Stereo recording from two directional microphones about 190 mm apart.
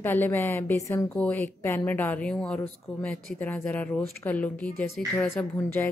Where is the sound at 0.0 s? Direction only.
10° left (ahead or behind).